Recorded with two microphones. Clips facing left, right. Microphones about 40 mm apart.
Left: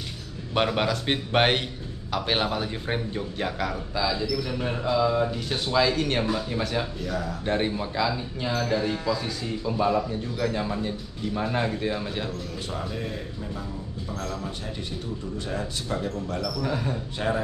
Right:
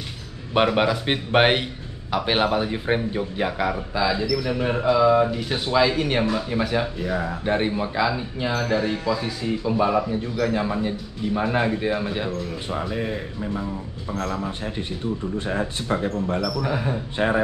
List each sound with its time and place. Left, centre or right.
0.6 s a man's voice: centre
7.4 s a man's voice: centre; by 16.2 s right
16.6 s speech: centre